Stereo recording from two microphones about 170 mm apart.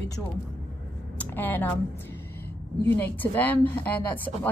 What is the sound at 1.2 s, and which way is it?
Speech, 10° left (ahead or behind).